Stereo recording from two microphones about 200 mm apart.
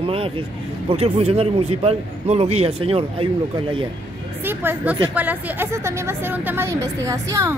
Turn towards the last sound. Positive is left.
turn(degrees=-15)  # may be behind; listen again after turning